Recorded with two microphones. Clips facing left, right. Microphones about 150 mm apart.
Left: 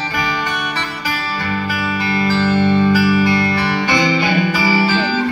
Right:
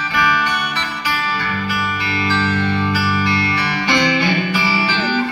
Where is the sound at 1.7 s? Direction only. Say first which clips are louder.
Left 3 dB; 50° left (ahead or behind).